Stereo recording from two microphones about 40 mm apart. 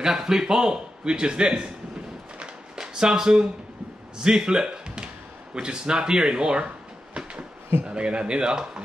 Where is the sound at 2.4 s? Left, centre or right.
Centre.